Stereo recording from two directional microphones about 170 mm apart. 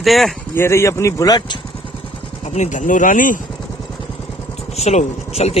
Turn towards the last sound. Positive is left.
turn(degrees=40)  # may be behind; listen again after turning